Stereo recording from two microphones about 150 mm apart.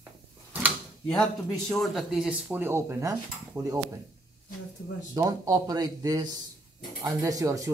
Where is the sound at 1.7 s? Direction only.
Centre (ahead or behind); by 3.8 s 20° right (ahead or behind).